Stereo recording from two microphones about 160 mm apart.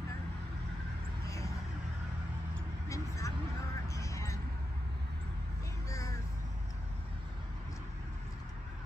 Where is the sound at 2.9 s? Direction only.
20° left (ahead or behind).